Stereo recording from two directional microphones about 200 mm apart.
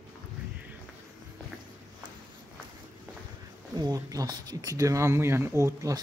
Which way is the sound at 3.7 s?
20° right (ahead or behind).